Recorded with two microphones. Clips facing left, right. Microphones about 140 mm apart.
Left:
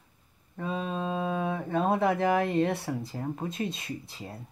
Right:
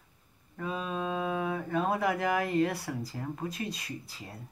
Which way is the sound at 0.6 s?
25° left (ahead or behind).